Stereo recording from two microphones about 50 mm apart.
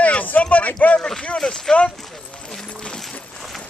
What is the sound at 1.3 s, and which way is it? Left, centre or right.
Speech, centre.